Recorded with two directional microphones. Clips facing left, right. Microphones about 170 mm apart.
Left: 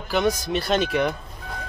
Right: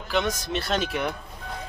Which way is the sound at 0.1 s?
5° left (ahead or behind).